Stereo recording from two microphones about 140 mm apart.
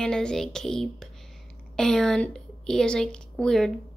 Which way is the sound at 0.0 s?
5° left (ahead or behind).